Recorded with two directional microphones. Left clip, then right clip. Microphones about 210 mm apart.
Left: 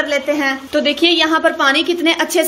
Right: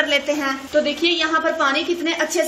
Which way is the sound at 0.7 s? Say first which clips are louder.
Left 4 dB; 40° left (ahead or behind).